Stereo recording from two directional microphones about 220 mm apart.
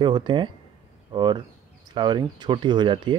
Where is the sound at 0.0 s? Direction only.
20° right (ahead or behind).